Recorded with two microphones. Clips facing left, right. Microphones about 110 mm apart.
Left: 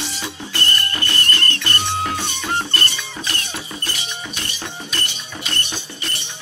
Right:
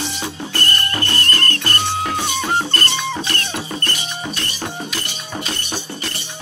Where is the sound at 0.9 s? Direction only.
40° right (ahead or behind).